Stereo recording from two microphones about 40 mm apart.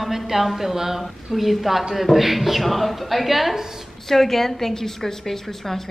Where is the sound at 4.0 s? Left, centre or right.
Centre.